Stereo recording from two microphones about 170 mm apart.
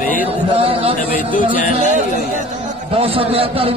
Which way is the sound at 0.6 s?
35° right (ahead or behind).